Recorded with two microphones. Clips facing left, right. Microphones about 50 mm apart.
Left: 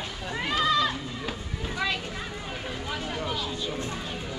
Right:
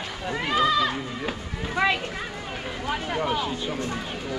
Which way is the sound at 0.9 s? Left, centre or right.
Right.